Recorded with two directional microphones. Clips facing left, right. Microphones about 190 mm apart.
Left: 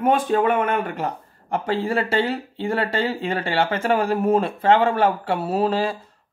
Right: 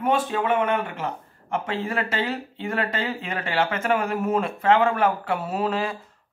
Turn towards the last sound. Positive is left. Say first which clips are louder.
# left 4 dB
turn(degrees=30)  # may be behind; listen again after turning